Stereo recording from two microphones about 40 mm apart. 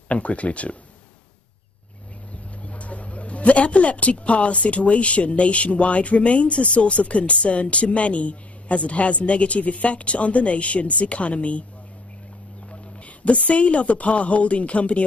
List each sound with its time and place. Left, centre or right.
0.1 s speech: left
2.6 s speech: left
13.2 s speech: left